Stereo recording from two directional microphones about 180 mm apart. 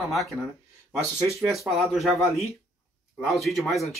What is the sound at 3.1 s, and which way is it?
Speech, centre (ahead or behind).